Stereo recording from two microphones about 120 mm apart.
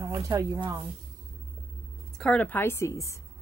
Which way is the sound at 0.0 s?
25° right (ahead or behind).